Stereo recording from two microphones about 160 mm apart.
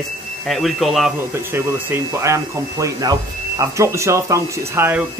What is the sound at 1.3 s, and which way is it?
Speech, 15° right (ahead or behind).